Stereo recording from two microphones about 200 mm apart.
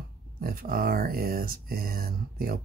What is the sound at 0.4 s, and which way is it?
Speech, 45° right (ahead or behind).